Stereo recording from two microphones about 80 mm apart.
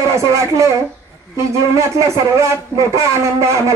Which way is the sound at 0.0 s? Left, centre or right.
Right.